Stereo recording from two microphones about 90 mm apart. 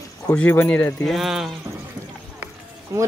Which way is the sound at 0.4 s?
20° left (ahead or behind).